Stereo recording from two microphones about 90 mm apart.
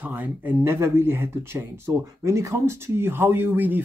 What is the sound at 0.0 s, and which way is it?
Speech, 20° right (ahead or behind).